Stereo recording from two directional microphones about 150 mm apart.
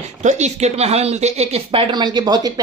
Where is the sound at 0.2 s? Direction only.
50° right (ahead or behind).